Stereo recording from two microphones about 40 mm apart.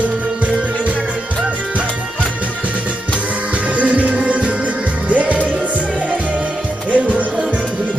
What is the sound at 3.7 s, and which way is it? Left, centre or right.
Music, right.